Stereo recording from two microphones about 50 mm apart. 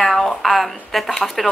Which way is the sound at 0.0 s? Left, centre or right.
Centre.